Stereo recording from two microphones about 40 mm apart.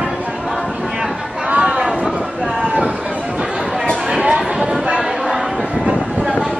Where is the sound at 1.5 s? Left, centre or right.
Right.